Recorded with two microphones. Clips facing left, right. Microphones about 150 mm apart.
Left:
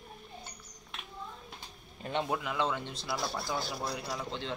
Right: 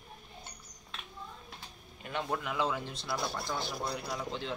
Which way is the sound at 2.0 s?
25° left (ahead or behind).